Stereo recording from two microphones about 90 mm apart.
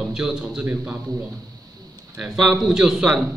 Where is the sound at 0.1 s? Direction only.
10° right (ahead or behind).